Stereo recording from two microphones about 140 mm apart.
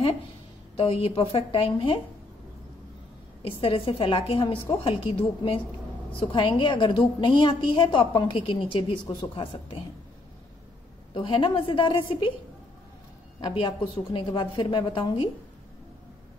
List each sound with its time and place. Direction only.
0.7 s a woman's voice: 40° left (ahead or behind)
3.4 s a woman's voice: 40° left (ahead or behind)
11.1 s a woman's voice: 35° left (ahead or behind)
13.4 s a woman's voice: 35° left (ahead or behind)